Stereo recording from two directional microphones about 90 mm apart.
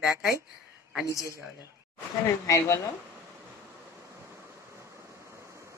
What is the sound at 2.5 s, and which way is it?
Speech, 35° left (ahead or behind).